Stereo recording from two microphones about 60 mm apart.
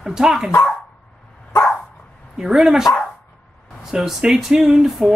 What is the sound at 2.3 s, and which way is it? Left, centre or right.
Speech, centre.